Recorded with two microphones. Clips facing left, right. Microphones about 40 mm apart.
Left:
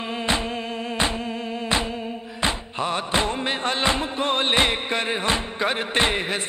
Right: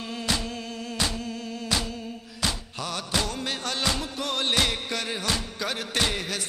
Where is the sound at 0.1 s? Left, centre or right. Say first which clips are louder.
Left 5 dB; left.